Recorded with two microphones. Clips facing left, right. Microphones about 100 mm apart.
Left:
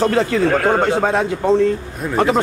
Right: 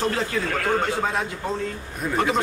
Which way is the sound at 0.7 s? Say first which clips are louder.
Left 8 dB; 65° left (ahead or behind).